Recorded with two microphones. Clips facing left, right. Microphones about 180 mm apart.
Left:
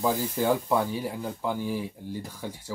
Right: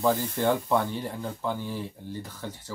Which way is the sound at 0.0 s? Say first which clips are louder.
Right 1 dB; 5° left (ahead or behind).